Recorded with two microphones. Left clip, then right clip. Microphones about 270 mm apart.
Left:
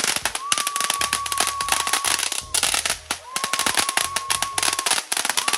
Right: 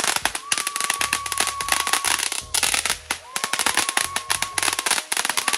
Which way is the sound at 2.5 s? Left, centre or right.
Centre.